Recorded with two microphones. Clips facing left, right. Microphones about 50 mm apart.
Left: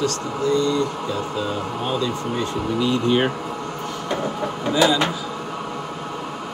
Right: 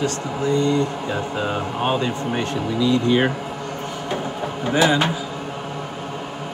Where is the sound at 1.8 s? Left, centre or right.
Right.